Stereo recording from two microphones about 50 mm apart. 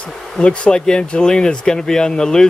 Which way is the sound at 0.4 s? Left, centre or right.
Centre.